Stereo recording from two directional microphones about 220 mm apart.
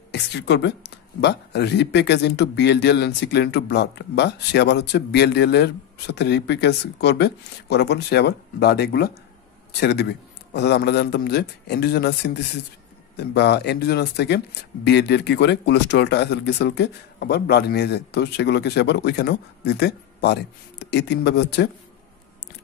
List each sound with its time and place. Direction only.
0.1 s speech: 50° left (ahead or behind)